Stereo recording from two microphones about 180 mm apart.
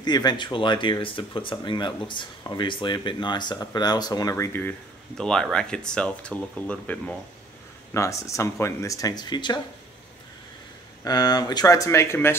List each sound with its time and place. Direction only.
0.0 s speech: 25° left (ahead or behind)
11.1 s speech: 20° left (ahead or behind)